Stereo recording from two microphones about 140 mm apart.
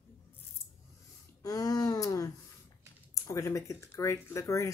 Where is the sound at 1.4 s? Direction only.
25° left (ahead or behind).